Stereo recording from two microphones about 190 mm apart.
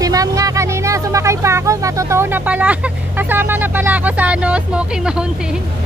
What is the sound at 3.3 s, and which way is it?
Speech, 10° right (ahead or behind).